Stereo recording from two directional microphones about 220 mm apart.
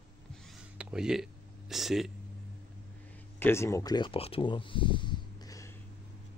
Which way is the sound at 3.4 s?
10° left (ahead or behind).